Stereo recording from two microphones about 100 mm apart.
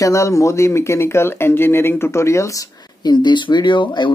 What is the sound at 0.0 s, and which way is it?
Speech, 30° left (ahead or behind).